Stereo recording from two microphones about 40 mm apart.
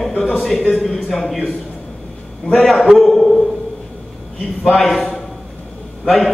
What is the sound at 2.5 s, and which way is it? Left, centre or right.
Speech, centre.